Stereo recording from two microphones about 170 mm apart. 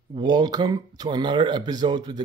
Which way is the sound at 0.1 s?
25° right (ahead or behind).